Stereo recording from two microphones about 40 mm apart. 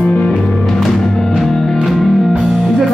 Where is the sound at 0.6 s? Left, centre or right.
Centre.